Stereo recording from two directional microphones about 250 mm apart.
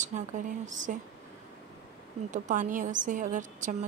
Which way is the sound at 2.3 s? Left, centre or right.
Right.